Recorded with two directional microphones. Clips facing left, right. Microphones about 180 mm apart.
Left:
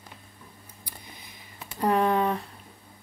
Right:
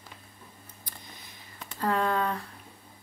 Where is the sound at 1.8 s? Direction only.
20° left (ahead or behind).